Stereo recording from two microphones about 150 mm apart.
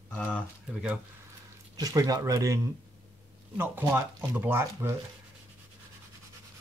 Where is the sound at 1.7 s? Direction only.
25° right (ahead or behind).